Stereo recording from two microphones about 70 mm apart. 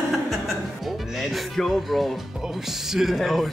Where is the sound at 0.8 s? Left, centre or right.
Centre.